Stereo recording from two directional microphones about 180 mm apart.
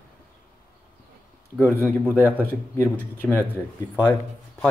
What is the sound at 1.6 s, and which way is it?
Speech, 10° left (ahead or behind).